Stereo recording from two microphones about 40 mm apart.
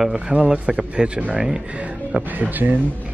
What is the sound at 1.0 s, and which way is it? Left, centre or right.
Speech, centre.